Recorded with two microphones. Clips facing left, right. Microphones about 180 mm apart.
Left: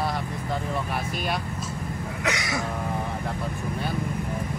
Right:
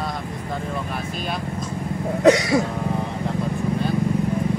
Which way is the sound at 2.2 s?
30° right (ahead or behind).